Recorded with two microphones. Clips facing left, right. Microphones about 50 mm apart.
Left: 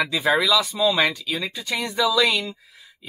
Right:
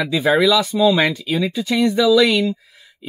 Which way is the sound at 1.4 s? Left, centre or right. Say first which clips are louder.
Right 9 dB; centre.